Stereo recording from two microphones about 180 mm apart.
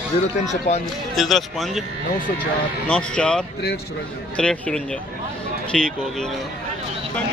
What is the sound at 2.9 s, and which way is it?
A man's voice, 5° left (ahead or behind).